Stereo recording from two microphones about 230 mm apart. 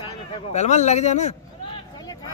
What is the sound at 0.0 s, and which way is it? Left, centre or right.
Speech, left.